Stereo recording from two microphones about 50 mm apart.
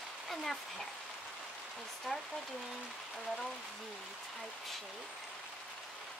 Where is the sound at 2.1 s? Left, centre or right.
Centre.